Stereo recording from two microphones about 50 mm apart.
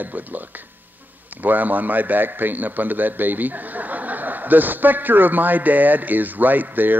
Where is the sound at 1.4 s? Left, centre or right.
Right.